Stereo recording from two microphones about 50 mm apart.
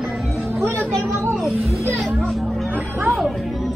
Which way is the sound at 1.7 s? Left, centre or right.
Right.